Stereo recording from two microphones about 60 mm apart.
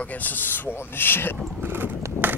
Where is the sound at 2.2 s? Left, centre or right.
Right.